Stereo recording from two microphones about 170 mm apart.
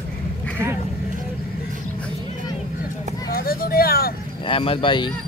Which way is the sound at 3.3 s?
60° left (ahead or behind).